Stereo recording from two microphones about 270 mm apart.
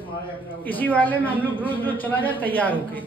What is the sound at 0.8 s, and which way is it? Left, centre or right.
A man's voice, centre.